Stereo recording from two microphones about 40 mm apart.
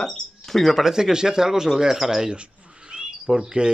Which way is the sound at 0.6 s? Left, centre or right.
Centre.